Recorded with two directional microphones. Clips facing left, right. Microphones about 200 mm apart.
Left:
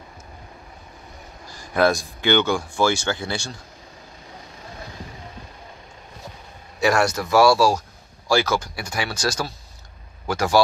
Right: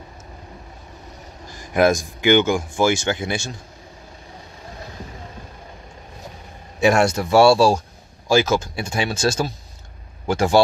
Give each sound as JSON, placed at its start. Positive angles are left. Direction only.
{"t": 1.5, "sound": "speech", "side_deg": -20}
{"t": 6.8, "sound": "speech", "side_deg": -25}